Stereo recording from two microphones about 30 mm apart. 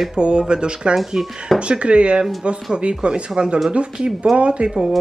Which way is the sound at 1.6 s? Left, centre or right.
Right.